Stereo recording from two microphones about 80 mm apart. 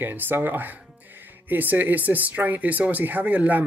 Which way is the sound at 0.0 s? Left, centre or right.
Right.